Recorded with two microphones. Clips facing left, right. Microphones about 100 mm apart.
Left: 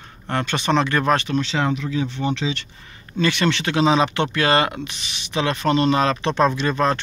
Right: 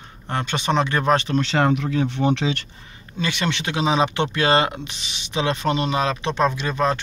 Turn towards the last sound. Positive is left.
turn(degrees=-10)  # may be behind; listen again after turning